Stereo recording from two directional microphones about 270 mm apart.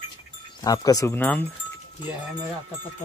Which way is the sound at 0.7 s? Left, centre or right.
Centre.